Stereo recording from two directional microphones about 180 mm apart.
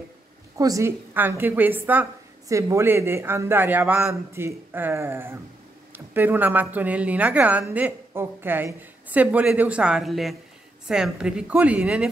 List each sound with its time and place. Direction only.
0.6 s a woman's voice: 20° right (ahead or behind)